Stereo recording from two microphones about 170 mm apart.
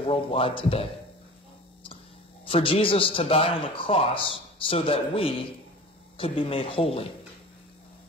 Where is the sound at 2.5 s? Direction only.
30° left (ahead or behind).